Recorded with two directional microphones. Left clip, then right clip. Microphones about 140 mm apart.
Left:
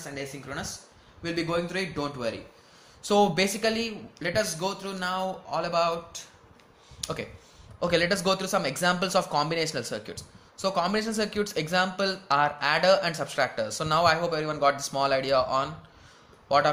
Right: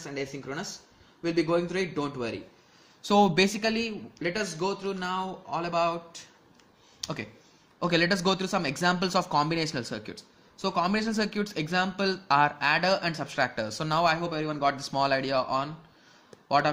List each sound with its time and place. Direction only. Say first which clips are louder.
0.0 s speech: right 2 dB; 15° right (ahead or behind)
3.0 s speech: even; 30° right (ahead or behind); by 6.2 s 10° right (ahead or behind)
7.0 s a sound: left 2 dB; 20° right (ahead or behind)
7.8 s speech: left 1 dB; 30° right (ahead or behind)
12.1 s a man's voice: right 1 dB; 30° right (ahead or behind)